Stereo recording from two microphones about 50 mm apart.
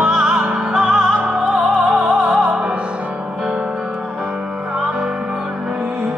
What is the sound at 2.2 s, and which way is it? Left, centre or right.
Opera, centre.